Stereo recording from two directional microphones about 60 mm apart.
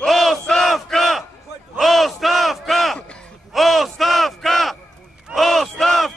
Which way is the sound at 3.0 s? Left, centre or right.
Centre.